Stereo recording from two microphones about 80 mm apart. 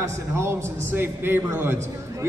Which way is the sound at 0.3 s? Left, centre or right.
Right.